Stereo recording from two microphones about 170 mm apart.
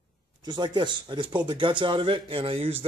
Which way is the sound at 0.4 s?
25° right (ahead or behind).